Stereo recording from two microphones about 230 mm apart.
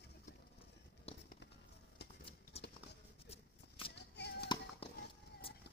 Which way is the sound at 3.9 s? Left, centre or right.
Left.